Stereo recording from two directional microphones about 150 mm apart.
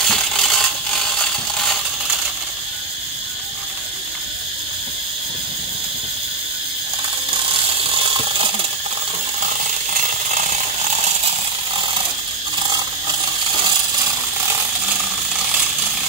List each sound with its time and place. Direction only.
0.0 s mechanisms: centre (ahead or behind)
7.8 s a sound: 35° right (ahead or behind)
9.4 s ratchet: 60° right (ahead or behind)
12.5 s mechanisms: 30° right (ahead or behind)